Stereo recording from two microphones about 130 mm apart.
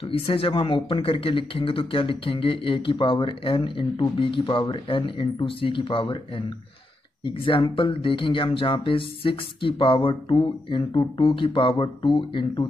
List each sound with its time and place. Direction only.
0.1 s speech: 45° left (ahead or behind)